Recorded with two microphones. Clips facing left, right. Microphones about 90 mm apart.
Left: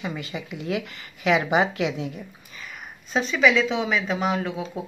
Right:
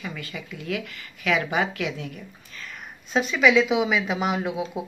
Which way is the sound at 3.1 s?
Centre (ahead or behind).